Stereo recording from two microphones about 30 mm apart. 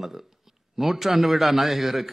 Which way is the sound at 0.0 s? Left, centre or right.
Centre.